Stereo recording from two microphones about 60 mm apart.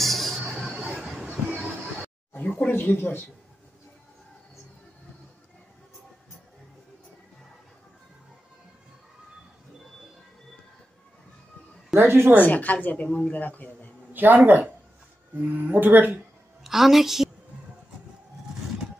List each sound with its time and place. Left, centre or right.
0.0 s a sound: centre
0.7 s a sound: right
2.6 s speech: left
12.0 s speech: right
12.4 s a woman's voice: left
14.1 s speech: right
16.6 s a woman's voice: centre